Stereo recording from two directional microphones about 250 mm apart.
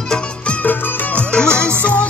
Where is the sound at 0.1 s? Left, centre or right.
Centre.